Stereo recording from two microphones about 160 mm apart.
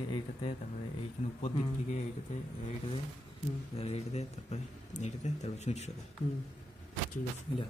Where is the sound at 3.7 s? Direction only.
40° left (ahead or behind).